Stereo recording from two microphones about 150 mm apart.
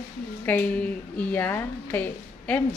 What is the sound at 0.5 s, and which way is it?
A woman's voice, 10° left (ahead or behind).